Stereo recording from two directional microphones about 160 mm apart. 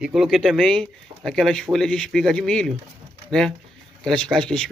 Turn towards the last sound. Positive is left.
turn(degrees=5)  # may be behind; listen again after turning